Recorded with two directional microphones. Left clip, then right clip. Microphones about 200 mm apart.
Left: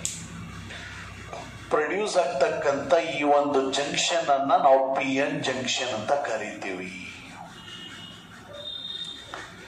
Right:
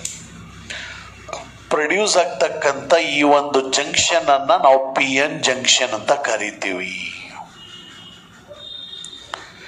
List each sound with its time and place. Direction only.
1.7 s a man's voice: 45° right (ahead or behind)